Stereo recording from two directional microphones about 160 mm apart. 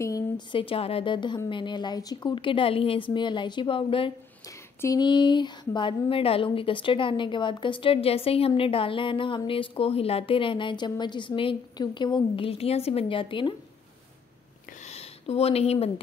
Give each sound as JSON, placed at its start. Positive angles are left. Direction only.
{"t": 0.5, "sound": "a woman's voice", "side_deg": 35}
{"t": 14.9, "sound": "speech", "side_deg": 40}